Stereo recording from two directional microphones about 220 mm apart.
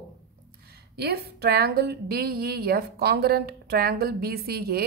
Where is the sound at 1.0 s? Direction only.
45° right (ahead or behind).